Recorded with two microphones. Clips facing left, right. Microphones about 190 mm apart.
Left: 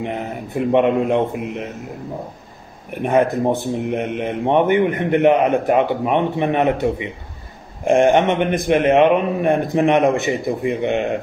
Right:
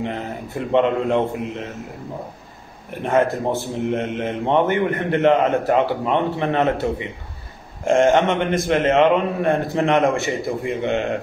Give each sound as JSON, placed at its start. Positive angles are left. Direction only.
{"t": 0.0, "sound": "speech", "side_deg": 15}
{"t": 3.0, "sound": "speech", "side_deg": 15}